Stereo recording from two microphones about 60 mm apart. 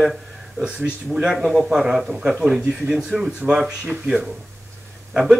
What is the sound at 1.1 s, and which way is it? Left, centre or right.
Speech, centre.